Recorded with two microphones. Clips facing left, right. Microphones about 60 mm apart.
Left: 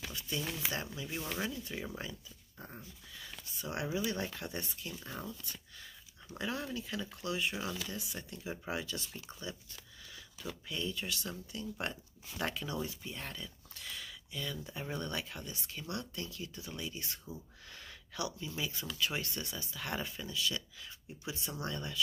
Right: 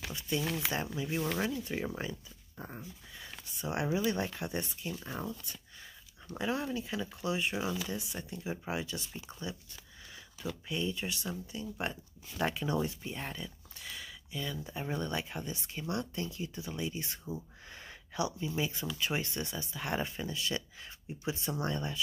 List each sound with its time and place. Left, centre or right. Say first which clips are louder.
0.0 s a sound: right 5 dB; right
0.9 s speech: right 6 dB; right
3.5 s speech: right 4 dB; right
6.3 s speech: right 4 dB; centre
10.7 s speech: right 3 dB; centre